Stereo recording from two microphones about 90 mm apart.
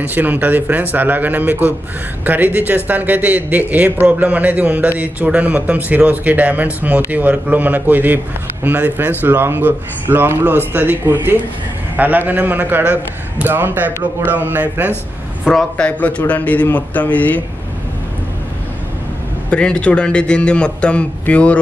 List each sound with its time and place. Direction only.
0.0 s a man's voice: 20° right (ahead or behind)
15.4 s a man's voice: 5° left (ahead or behind)
19.5 s a man's voice: 10° left (ahead or behind)